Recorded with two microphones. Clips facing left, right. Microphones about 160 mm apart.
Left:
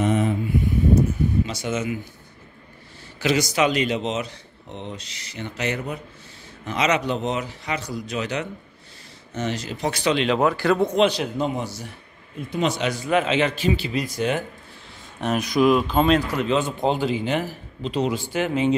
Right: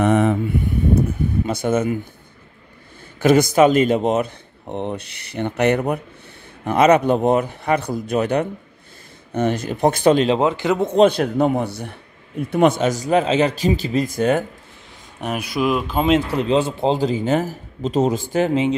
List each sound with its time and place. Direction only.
0.0 s speech: 65° right (ahead or behind)
1.0 s speech: 55° right (ahead or behind)
3.2 s speech: 50° right (ahead or behind)
10.2 s speech: 25° right (ahead or behind)
11.0 s speech: 55° right (ahead or behind)
15.1 s speech: 10° right (ahead or behind)
16.1 s a man's voice: 25° right (ahead or behind); by 18.5 s 40° right (ahead or behind)